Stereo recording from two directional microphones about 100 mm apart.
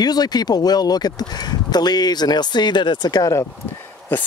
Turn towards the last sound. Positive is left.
turn(degrees=20)  # may be behind; listen again after turning